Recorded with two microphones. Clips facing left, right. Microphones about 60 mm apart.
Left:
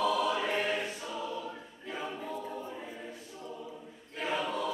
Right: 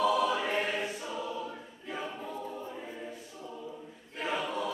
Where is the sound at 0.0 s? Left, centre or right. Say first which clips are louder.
Right 2 dB; centre.